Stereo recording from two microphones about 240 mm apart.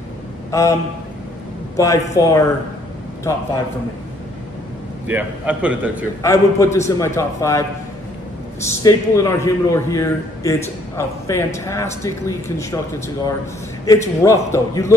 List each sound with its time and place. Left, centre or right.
0.5 s speech: centre
1.8 s a man's voice: centre
5.0 s a man's voice: centre
6.2 s a man's voice: centre
8.6 s a man's voice: centre